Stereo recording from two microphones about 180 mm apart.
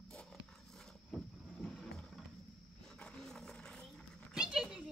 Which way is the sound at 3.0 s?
5° left (ahead or behind).